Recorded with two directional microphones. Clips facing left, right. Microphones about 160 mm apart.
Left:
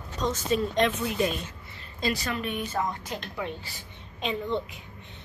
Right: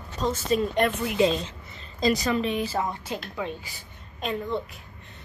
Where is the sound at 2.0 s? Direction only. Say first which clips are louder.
Right 6 dB; 40° right (ahead or behind).